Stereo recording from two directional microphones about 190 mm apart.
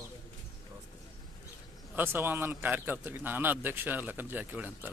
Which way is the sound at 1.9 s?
10° right (ahead or behind).